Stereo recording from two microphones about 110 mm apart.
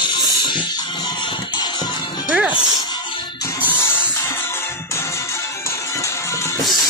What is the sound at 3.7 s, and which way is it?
Music, 20° left (ahead or behind).